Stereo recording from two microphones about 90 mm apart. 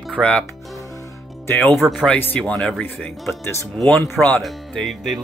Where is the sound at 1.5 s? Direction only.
20° left (ahead or behind).